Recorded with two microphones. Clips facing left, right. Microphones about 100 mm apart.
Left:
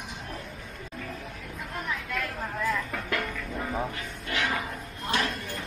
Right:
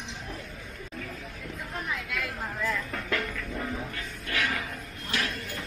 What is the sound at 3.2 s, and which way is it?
Music, 15° left (ahead or behind).